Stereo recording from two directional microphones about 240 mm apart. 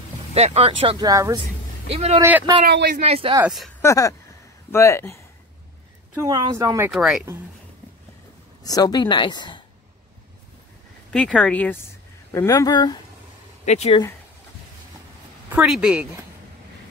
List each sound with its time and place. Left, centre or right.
0.3 s speech: right
1.9 s speech: right
2.2 s speech: centre
2.6 s speech: right
3.0 s speech: right
3.4 s speech: centre
3.8 s speech: centre
6.2 s speech: centre
6.9 s speech: centre
8.6 s speech: centre
11.1 s speech: centre; by 14.0 s left
15.5 s speech: centre